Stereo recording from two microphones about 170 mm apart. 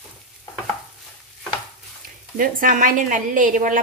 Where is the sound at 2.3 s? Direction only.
50° right (ahead or behind).